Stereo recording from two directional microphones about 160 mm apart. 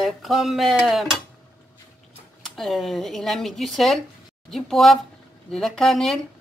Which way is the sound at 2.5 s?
Centre (ahead or behind).